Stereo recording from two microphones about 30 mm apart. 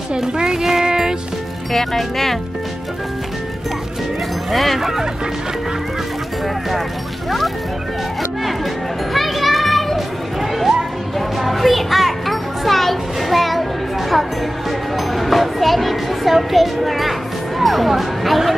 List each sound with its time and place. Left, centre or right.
0.2 s music: right
1.7 s speech: centre
4.5 s speech: centre
4.7 s speech: centre
7.2 s music: centre
9.1 s children playing: centre
10.4 s a sound: centre
11.1 s music: centre
15.0 s a sound: centre
17.6 s speech: centre